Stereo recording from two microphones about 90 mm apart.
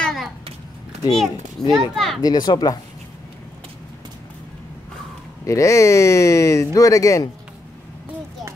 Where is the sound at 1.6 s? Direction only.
5° left (ahead or behind).